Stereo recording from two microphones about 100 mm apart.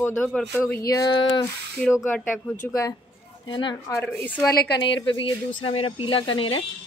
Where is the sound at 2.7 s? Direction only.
35° left (ahead or behind).